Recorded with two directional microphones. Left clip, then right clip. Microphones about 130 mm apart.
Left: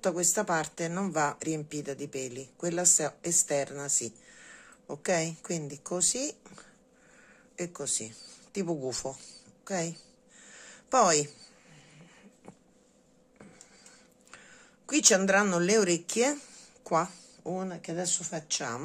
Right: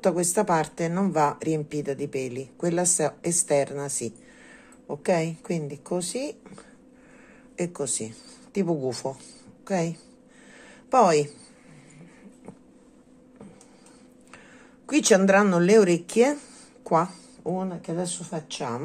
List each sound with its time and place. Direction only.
0.0 s a woman's voice: 5° left (ahead or behind)
7.5 s speech: centre (ahead or behind)
8.5 s a woman's voice: 15° left (ahead or behind)
10.6 s a sound: 20° left (ahead or behind)
14.9 s speech: 5° left (ahead or behind)
17.4 s a sound: 25° left (ahead or behind)
17.6 s speech: 35° left (ahead or behind)